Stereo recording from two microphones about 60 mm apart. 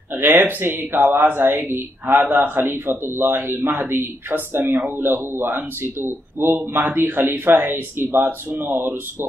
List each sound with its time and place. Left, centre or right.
0.2 s a man's voice: right